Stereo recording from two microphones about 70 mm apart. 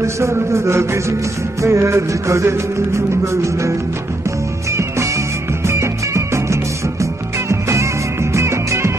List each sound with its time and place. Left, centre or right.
0.0 s music: right
4.7 s music: right